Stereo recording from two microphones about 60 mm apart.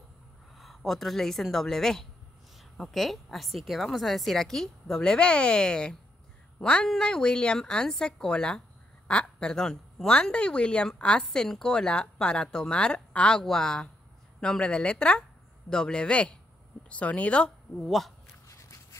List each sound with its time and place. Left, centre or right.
0.6 s a woman's voice: centre
17.8 s a woman's voice: centre
18.5 s a sound: left